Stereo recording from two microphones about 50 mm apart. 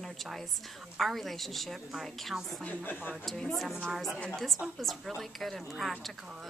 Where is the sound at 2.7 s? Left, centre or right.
Left.